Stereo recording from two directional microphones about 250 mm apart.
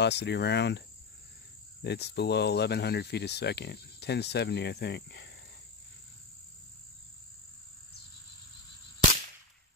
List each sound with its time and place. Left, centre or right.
0.0 s speech: left